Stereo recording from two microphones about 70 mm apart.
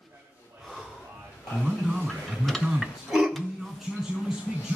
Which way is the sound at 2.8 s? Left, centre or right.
Centre.